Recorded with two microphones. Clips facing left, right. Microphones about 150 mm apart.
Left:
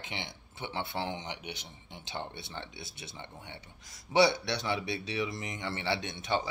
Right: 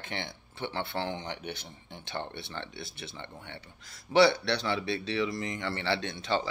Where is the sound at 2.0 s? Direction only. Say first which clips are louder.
Right 2 dB; 60° right (ahead or behind).